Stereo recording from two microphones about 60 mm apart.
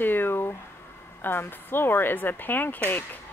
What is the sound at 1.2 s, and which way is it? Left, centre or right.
A woman's voice, left.